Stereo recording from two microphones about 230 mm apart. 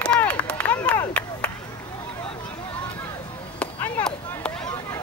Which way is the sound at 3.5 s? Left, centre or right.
Centre.